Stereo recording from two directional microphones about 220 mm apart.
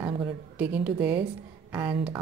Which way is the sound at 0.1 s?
25° right (ahead or behind).